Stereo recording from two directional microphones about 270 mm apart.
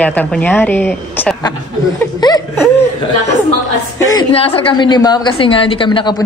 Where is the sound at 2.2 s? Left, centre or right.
Centre.